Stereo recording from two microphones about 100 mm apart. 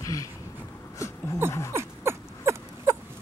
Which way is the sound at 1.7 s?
25° right (ahead or behind).